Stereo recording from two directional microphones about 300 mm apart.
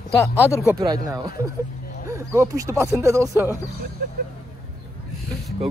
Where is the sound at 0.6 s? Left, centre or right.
Centre.